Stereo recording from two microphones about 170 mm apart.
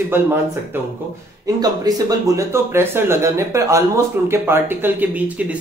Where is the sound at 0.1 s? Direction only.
15° right (ahead or behind).